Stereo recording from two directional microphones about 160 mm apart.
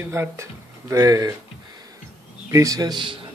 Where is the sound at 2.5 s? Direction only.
20° right (ahead or behind).